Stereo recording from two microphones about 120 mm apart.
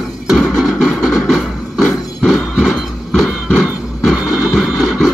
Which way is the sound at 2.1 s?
Centre (ahead or behind).